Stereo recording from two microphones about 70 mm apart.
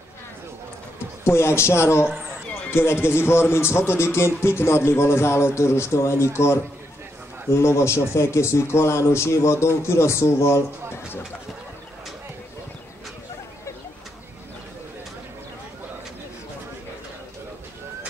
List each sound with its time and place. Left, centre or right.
1.2 s a man's voice: left